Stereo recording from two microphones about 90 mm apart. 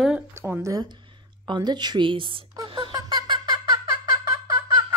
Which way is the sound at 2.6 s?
65° right (ahead or behind).